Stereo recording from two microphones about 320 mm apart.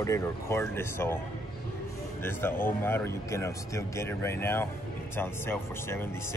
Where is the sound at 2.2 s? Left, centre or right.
Centre.